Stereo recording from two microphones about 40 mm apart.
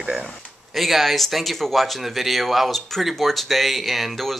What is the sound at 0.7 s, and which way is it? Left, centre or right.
Speech, centre.